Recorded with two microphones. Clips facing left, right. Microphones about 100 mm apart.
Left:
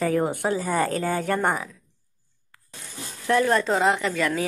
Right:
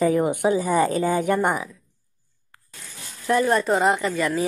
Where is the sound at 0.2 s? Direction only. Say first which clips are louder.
Right 4 dB; 15° right (ahead or behind).